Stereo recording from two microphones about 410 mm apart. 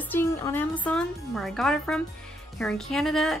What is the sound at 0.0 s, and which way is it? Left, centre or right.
Speech, centre.